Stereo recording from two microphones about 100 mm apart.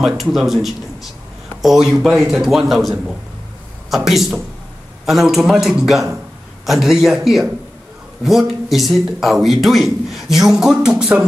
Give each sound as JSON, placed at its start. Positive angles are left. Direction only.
{"t": 0.0, "sound": "a man's voice", "side_deg": 0}